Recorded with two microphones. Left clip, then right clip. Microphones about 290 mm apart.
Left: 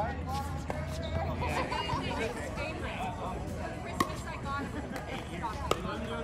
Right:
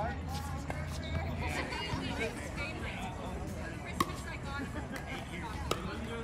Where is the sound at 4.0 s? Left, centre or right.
Left.